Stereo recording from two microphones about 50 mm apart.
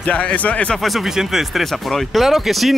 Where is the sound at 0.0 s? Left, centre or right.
Left.